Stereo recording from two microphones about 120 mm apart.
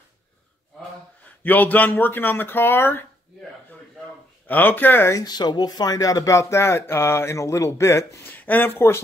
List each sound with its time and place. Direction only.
1.4 s speech: 15° left (ahead or behind)
4.5 s speech: 15° left (ahead or behind)
5.2 s speech: 35° left (ahead or behind); by 9.0 s 20° left (ahead or behind)